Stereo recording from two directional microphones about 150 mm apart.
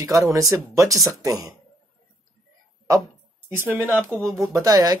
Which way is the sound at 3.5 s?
15° right (ahead or behind).